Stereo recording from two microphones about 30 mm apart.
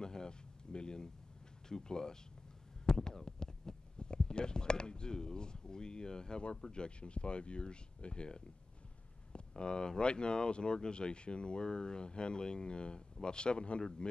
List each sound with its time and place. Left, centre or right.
0.0 s speech: left